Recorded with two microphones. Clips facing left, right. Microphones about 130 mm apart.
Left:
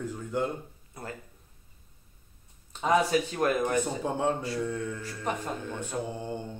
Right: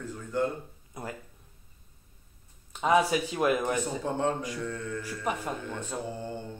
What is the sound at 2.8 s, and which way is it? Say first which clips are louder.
Speech: even; 10° right (ahead or behind).